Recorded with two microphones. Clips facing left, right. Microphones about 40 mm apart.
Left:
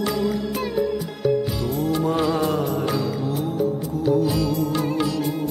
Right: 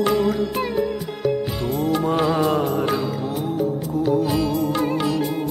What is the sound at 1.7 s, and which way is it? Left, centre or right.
Music, centre.